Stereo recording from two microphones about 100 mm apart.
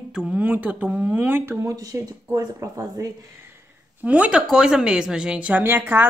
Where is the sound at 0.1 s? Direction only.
15° right (ahead or behind); by 3.1 s 35° right (ahead or behind).